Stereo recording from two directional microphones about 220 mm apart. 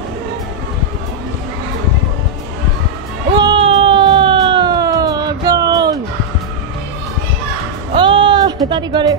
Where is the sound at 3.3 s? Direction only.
20° right (ahead or behind).